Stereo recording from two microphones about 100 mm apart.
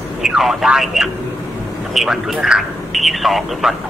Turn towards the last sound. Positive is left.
turn(degrees=0)  # may be behind; listen again after turning